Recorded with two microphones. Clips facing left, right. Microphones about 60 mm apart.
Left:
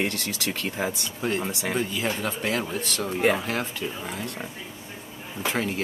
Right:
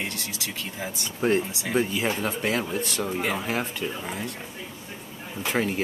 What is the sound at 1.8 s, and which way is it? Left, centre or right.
Speech, centre.